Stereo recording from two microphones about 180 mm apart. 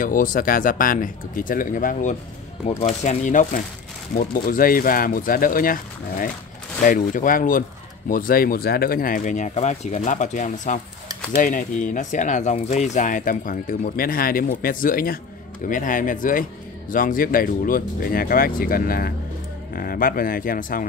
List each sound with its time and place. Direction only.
0.0 s speech: 50° left (ahead or behind)